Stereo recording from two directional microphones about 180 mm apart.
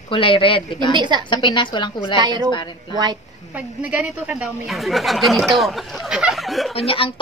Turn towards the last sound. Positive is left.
turn(degrees=30)  # may be behind; listen again after turning